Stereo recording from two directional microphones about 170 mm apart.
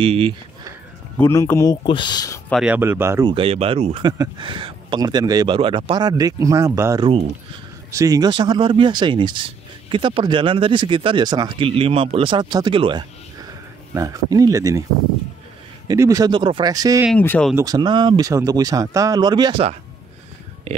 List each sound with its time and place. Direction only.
0.0 s speech: 30° right (ahead or behind)
1.1 s speech: 15° left (ahead or behind)
1.9 s speech: 25° left (ahead or behind)
2.5 s speech: 5° right (ahead or behind)
3.3 s speech: 35° right (ahead or behind)
15.9 s speech: 20° right (ahead or behind)
17.1 s speech: 10° left (ahead or behind)
17.6 s speech: 25° right (ahead or behind)
20.7 s speech: 40° right (ahead or behind)